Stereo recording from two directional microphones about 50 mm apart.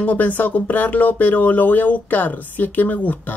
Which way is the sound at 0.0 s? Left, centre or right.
Left.